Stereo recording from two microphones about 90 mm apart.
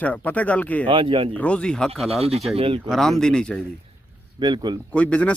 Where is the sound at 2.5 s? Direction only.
85° right.